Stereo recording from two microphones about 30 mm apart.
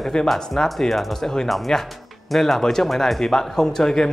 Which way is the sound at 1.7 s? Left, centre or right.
Centre.